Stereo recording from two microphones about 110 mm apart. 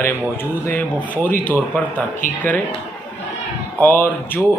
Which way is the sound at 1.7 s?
15° left (ahead or behind).